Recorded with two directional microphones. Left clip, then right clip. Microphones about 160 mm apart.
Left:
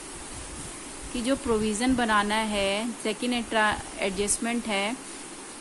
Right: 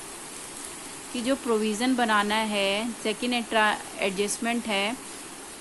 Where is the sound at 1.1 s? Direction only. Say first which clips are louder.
Even; centre (ahead or behind).